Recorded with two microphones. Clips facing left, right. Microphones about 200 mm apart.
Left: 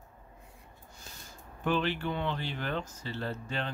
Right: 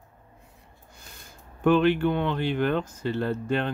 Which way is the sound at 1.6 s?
60° right (ahead or behind).